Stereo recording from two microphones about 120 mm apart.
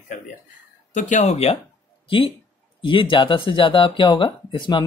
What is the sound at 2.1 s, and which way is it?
Speech, 45° left (ahead or behind).